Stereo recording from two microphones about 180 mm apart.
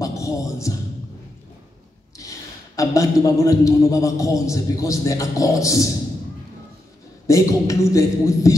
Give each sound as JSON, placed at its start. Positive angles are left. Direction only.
{"t": 0.0, "sound": "music", "side_deg": 20}
{"t": 2.1, "sound": "a man's voice", "side_deg": 20}
{"t": 7.2, "sound": "a man's voice", "side_deg": 15}